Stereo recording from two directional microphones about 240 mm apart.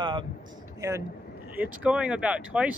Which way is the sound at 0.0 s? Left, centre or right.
Centre.